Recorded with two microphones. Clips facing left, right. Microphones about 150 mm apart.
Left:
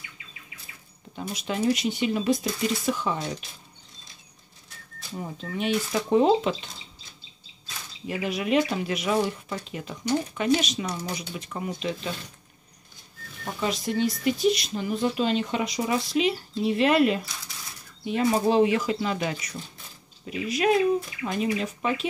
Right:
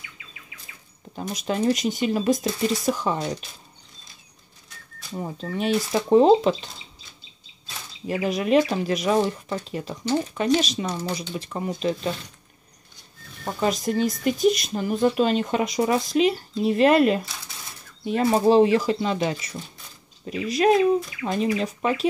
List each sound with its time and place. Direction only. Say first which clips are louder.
1.1 s speech: right 3 dB; 40° right (ahead or behind)
5.1 s speech: right 4 dB; 35° right (ahead or behind)
8.1 s speech: right 4 dB; 40° right (ahead or behind)
13.6 s speech: right 3 dB; 45° right (ahead or behind)